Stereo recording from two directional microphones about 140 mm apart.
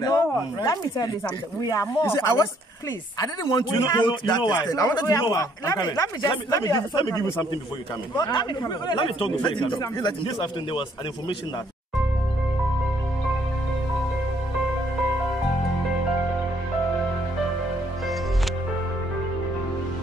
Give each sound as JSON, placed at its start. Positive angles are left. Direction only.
{"t": 0.0, "sound": "speech", "side_deg": 25}